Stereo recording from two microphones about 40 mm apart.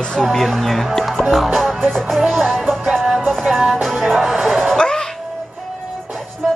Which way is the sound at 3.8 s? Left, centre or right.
Centre.